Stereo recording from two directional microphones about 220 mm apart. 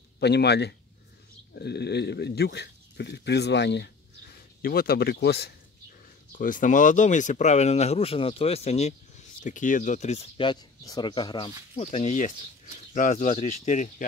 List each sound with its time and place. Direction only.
0.2 s speech: 50° left (ahead or behind)
6.3 s speech: 35° left (ahead or behind)